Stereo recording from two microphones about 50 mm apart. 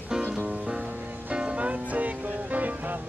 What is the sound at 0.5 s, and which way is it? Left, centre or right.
Music, centre.